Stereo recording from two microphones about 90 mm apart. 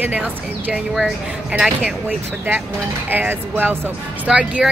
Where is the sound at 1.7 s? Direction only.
15° right (ahead or behind).